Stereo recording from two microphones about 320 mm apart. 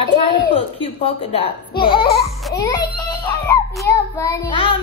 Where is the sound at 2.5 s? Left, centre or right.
Centre.